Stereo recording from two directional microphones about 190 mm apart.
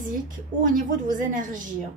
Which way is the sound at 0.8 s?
45° right (ahead or behind).